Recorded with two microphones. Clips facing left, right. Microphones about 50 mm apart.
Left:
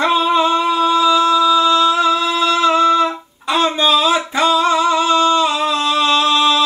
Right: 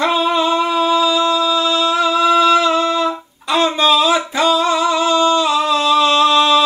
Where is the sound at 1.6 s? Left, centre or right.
Left.